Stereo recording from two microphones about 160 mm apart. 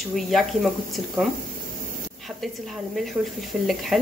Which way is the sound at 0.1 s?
Centre (ahead or behind).